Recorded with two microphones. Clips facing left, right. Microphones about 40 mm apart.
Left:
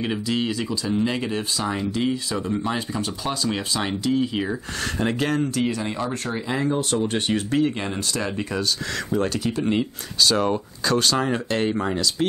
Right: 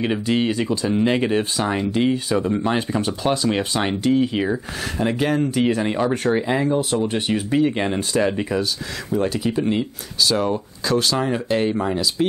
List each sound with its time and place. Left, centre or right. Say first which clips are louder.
0.0 s speech: right 4 dB; right
4.1 s speech: right 4 dB; centre
4.9 s speech: right 3 dB; centre
5.6 s speech: right 5 dB; right
7.0 s speech: right 2 dB; centre
7.7 s speech: right 6 dB; right
9.7 s speech: right 1 dB; centre